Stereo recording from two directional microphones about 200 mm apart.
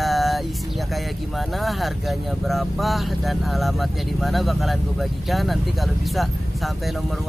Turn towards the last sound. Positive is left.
turn(degrees=0)  # may be behind; listen again after turning